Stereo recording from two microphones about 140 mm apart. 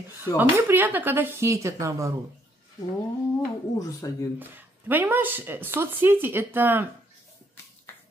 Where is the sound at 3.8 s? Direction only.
25° left (ahead or behind).